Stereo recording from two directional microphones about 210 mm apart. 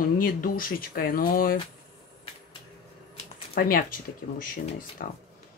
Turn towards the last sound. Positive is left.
turn(degrees=40)  # may be behind; listen again after turning